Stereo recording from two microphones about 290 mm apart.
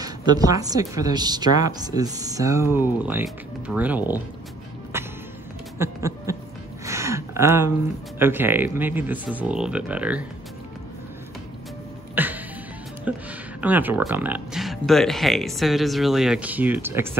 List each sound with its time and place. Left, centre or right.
0.0 s a woman's voice: centre
4.9 s music: centre
5.8 s a sound: centre
8.2 s speech: centre
12.2 s music: centre
13.1 s speech: centre